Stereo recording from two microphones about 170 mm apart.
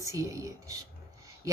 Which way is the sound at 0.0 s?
20° right (ahead or behind).